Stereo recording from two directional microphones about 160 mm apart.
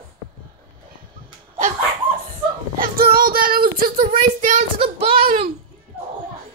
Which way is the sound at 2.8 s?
65° right (ahead or behind).